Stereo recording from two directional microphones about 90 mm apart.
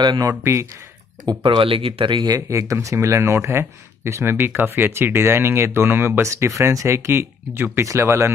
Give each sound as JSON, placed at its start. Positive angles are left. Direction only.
{"t": 0.0, "sound": "speech", "side_deg": -55}
{"t": 0.3, "sound": "speech", "side_deg": -25}
{"t": 1.4, "sound": "speech", "side_deg": -80}
{"t": 2.2, "sound": "speech", "side_deg": -40}